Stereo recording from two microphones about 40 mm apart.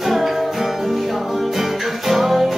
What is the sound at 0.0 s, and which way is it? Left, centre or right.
Music, centre.